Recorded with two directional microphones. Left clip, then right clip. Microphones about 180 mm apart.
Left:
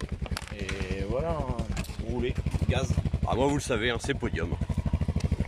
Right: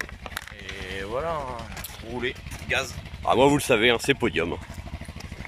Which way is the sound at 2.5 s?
75° left (ahead or behind).